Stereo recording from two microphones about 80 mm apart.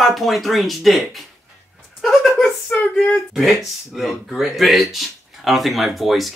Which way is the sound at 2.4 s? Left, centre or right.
Left.